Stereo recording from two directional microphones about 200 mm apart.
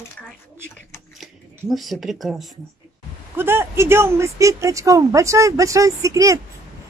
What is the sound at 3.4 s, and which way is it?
Speech, 10° right (ahead or behind).